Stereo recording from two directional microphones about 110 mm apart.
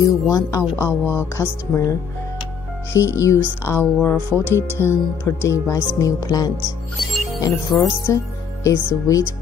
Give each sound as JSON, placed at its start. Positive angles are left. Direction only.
{"t": 0.0, "sound": "speech", "side_deg": 30}
{"t": 0.7, "sound": "speech", "side_deg": 20}